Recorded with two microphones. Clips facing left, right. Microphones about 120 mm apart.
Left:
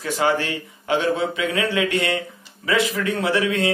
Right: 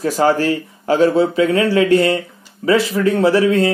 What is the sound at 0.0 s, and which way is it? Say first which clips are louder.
Speech: right 6 dB; 40° right (ahead or behind).